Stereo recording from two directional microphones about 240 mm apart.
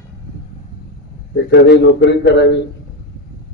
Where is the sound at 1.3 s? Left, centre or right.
Left.